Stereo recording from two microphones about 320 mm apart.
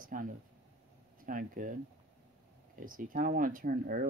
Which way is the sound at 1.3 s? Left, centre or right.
Right.